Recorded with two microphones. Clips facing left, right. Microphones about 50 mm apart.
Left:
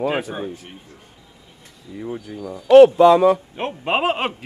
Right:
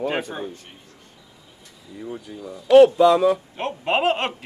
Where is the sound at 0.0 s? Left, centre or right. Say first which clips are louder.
Left 3 dB; centre.